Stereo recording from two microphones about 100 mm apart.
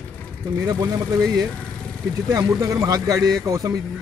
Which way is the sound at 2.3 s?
35° right (ahead or behind).